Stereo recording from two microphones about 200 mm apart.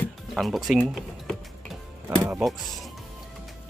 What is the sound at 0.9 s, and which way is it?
Music, centre (ahead or behind).